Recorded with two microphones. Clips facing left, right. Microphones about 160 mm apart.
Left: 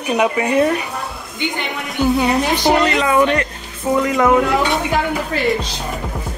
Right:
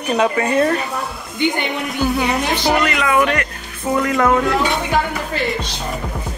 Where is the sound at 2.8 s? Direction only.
30° left (ahead or behind).